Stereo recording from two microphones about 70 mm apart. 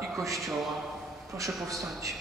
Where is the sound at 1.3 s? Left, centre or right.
Right.